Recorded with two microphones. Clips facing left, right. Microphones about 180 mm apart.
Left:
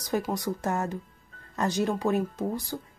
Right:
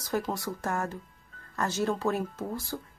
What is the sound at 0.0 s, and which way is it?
Speech, 15° left (ahead or behind).